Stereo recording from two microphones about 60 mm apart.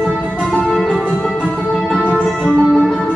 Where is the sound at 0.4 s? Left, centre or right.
Centre.